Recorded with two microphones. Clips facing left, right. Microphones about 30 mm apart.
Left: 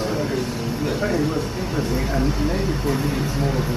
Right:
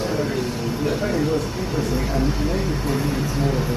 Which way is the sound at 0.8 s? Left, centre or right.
Centre.